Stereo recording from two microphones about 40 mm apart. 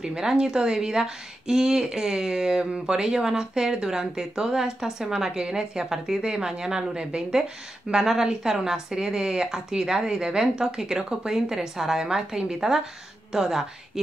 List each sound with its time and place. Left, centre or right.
0.2 s a woman's voice: centre